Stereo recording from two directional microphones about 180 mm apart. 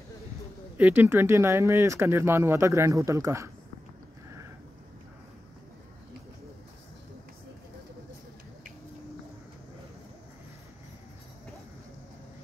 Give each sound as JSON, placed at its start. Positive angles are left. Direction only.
{"t": 0.7, "sound": "speech", "side_deg": -10}